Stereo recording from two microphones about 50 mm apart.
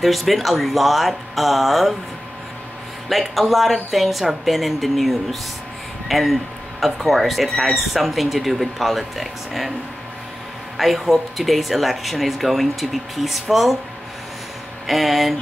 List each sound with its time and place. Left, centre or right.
0.0 s speech: centre
3.1 s speech: centre
10.8 s speech: centre
14.9 s speech: centre